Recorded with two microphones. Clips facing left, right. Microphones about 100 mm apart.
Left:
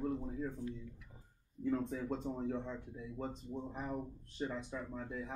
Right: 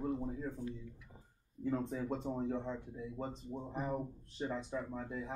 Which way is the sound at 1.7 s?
10° right (ahead or behind).